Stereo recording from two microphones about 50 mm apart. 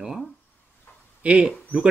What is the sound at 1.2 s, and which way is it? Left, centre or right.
Speech, right.